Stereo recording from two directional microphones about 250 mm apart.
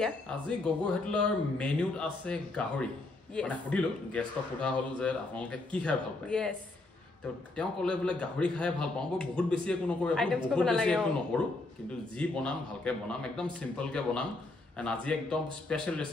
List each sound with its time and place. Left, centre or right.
0.0 s speech: centre
7.5 s speech: centre